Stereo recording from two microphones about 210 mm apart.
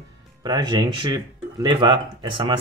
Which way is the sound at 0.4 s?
20° right (ahead or behind).